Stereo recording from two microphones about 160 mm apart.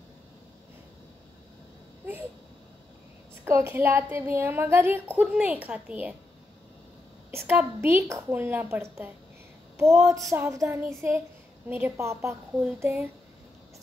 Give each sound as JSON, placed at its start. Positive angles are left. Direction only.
{"t": 3.4, "sound": "speech", "side_deg": -15}
{"t": 7.2, "sound": "speech", "side_deg": -15}